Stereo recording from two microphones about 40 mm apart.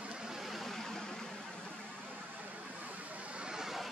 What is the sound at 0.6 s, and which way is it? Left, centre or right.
Vehicle, centre.